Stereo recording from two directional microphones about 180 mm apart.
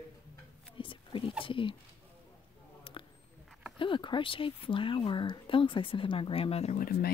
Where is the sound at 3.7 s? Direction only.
25° left (ahead or behind).